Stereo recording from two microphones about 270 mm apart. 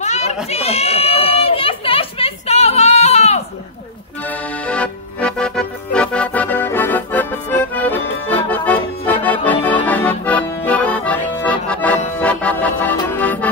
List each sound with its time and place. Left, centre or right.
0.0 s children playing: left
4.6 s accordion: centre